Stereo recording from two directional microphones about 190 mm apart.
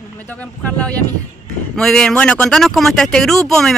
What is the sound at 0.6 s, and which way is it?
Speech, 5° left (ahead or behind).